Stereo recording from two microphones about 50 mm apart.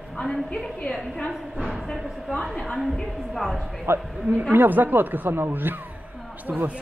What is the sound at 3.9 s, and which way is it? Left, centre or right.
Speech, right.